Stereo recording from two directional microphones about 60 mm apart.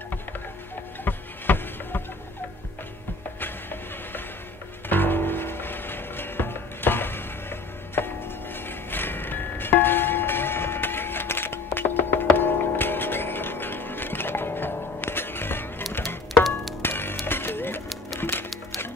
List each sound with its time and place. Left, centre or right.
1.0 s music: left
4.8 s music: left
16.8 s music: left